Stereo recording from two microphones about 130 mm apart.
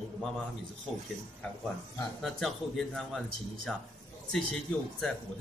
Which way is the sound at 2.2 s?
Centre (ahead or behind).